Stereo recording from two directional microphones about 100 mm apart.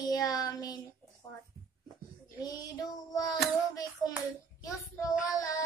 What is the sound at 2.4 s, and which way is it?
Child singing, 40° left (ahead or behind).